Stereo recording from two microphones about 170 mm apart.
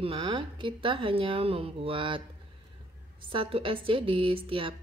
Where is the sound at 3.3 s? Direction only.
30° right (ahead or behind).